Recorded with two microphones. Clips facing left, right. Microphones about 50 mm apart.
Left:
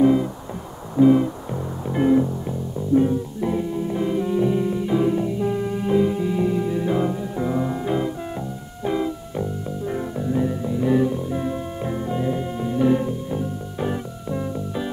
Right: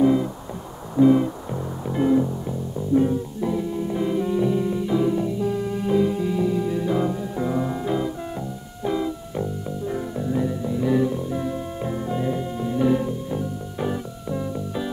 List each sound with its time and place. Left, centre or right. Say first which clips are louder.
0.0 s music: left 2 dB; centre
2.0 s music: left 2 dB; centre
2.9 s music: left 1 dB; centre
3.3 s music: left 1 dB; centre
3.7 s music: left 1 dB; centre
7.8 s music: left 1 dB; centre
12.4 s music: left 1 dB; centre
13.8 s music: left 1 dB; centre